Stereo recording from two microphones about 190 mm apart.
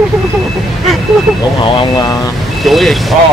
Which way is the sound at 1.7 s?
20° left (ahead or behind).